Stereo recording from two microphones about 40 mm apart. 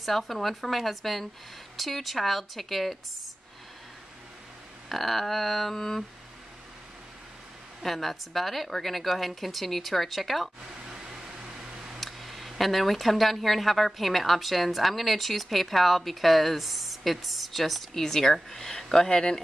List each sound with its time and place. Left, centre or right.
0.0 s speech: centre
4.8 s speech: centre
7.8 s speech: centre
12.0 s speech: centre
18.0 s speech: centre